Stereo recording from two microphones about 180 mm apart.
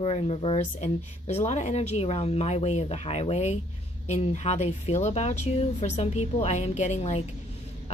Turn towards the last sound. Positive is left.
turn(degrees=35)  # may be behind; listen again after turning